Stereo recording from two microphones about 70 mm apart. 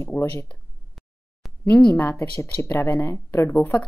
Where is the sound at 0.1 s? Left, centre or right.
Left.